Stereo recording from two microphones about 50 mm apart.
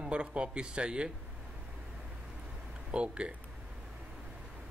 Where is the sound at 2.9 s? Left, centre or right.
Right.